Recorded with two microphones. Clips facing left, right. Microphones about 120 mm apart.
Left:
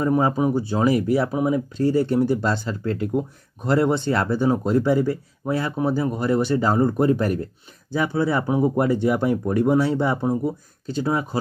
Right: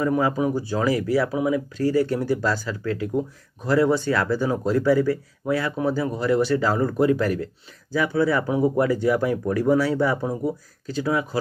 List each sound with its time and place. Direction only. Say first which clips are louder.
0.0 s speech: left 2 dB; 25° left (ahead or behind)